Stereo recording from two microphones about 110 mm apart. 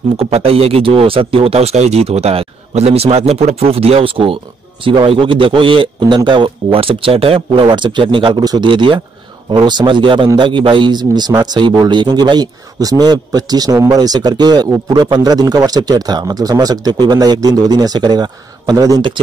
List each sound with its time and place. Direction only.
0.2 s a man's voice: 65° right (ahead or behind); by 19.0 s 35° right (ahead or behind)